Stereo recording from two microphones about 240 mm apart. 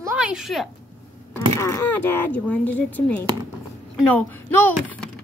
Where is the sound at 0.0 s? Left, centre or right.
Centre.